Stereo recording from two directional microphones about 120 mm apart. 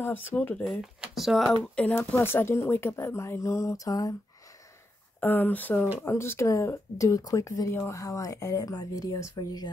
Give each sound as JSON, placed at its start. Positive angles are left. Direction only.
{"t": 0.0, "sound": "speech", "side_deg": 15}
{"t": 1.1, "sound": "speech", "side_deg": 0}
{"t": 5.2, "sound": "speech", "side_deg": 15}